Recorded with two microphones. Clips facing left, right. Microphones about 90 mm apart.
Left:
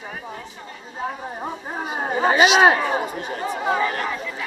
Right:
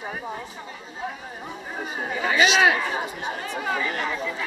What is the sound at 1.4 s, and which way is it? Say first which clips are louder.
Speech: left 3 dB; 40° left (ahead or behind).